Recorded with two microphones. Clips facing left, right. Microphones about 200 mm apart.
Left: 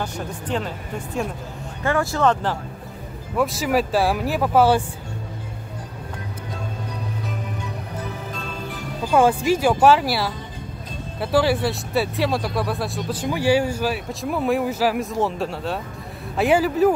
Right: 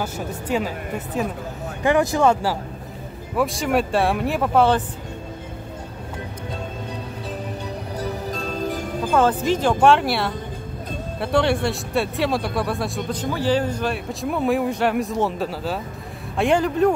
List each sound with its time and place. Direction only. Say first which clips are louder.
0.0 s speech: right 1 dB; 5° right (ahead or behind)
1.8 s speech: right 3 dB; 15° right (ahead or behind)
3.3 s speech: even; centre (ahead or behind)
8.0 s music: right 7 dB; 40° right (ahead or behind)
9.1 s speech: left 2 dB; 10° left (ahead or behind)